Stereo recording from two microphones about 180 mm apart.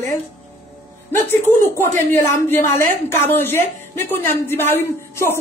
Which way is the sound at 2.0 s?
10° left (ahead or behind).